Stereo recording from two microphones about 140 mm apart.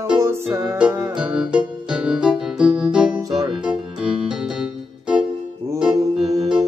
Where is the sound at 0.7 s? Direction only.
5° right (ahead or behind).